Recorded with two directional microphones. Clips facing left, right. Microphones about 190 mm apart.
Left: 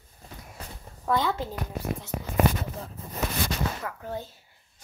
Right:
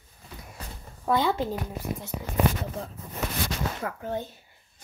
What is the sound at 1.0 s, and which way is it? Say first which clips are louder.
Speech: right 2 dB; 15° right (ahead or behind).